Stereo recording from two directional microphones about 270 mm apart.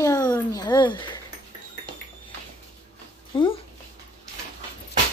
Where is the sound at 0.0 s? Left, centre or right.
Centre.